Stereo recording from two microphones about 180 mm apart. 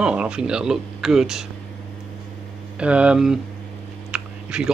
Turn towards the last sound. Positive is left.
turn(degrees=-5)  # may be behind; listen again after turning